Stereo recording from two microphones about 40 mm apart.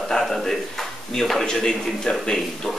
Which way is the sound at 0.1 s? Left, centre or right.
Centre.